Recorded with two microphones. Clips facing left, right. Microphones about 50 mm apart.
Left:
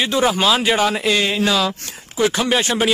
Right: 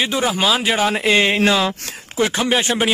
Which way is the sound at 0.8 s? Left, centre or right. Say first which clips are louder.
Right 2 dB; right.